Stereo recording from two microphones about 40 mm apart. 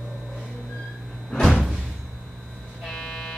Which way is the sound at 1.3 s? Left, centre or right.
Centre.